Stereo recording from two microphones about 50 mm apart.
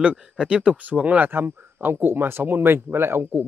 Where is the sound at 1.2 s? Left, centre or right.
Right.